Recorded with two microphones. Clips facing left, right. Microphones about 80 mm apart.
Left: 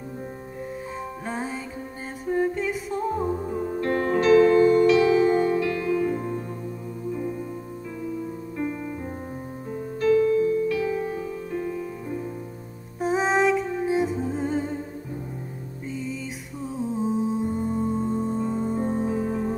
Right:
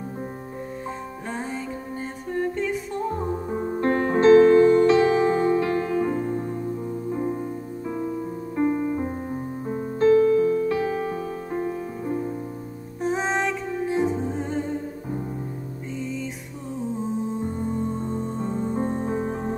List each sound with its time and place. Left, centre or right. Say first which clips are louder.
1.3 s music: even; centre
2.2 s a capella: left 2 dB; centre
3.5 s music: right 5 dB; right
13.0 s music: left 3 dB; centre
16.9 s music: left 3 dB; centre
19.0 s music: left 1 dB; right